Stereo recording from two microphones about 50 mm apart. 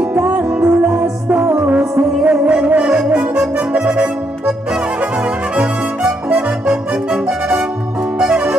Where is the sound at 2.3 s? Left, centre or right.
Right.